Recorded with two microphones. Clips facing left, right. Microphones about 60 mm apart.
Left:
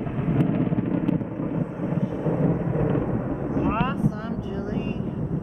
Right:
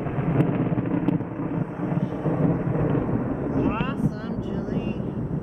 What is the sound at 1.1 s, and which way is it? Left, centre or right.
Thunder, centre.